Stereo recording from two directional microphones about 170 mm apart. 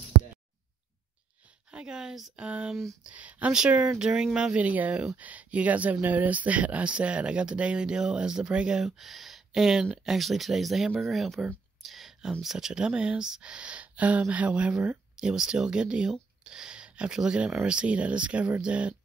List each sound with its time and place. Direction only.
1.7 s speech: 5° right (ahead or behind)